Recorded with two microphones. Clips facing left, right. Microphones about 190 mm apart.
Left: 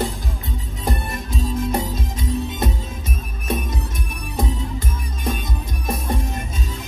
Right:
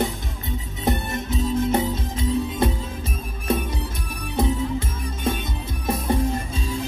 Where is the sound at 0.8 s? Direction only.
25° right (ahead or behind).